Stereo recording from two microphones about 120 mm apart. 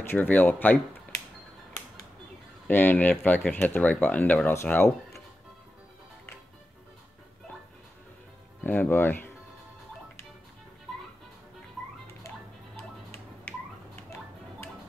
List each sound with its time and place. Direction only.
0.1 s speech: 15° left (ahead or behind)
2.7 s speech: 15° left (ahead or behind)
8.6 s speech: 15° left (ahead or behind)